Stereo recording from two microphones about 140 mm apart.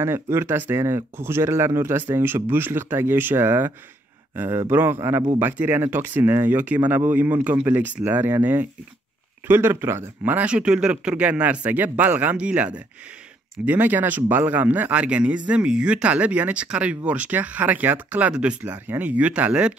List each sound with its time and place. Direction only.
0.0 s speech: 15° right (ahead or behind)